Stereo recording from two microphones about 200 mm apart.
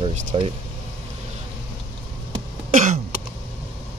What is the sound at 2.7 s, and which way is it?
Throat clearing, 40° right (ahead or behind).